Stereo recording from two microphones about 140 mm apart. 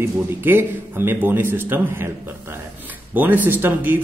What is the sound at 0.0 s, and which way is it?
Speech, 15° right (ahead or behind).